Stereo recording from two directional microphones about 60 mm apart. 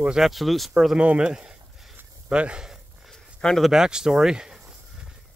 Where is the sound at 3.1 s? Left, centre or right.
Centre.